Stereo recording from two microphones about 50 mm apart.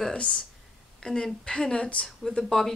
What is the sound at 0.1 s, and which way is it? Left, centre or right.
Speech, centre.